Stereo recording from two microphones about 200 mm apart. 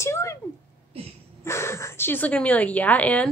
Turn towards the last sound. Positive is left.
turn(degrees=5)  # may be behind; listen again after turning